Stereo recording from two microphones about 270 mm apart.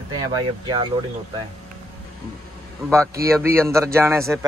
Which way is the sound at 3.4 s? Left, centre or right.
Centre.